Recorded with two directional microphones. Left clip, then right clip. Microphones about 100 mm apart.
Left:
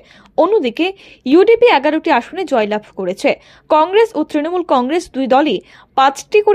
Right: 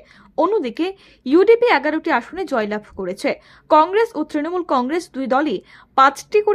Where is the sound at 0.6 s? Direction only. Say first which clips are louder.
Left 6 dB; 20° left (ahead or behind).